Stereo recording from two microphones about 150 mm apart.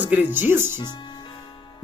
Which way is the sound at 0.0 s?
10° right (ahead or behind).